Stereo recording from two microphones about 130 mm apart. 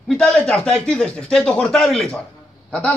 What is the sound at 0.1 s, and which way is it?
A man's voice, 5° left (ahead or behind).